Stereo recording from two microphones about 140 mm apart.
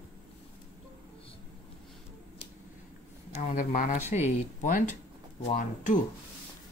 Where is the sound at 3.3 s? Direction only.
65° left (ahead or behind).